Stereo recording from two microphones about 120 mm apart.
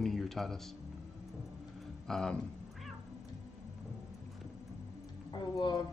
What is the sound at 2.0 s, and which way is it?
Speech, 5° left (ahead or behind).